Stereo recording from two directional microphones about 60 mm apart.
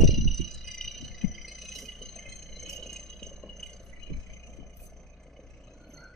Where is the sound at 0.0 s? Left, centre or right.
Centre.